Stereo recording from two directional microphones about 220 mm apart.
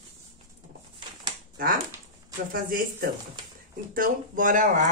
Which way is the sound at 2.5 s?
40° right (ahead or behind).